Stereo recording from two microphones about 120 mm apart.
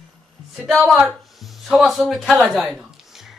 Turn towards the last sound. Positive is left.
turn(degrees=-5)  # may be behind; listen again after turning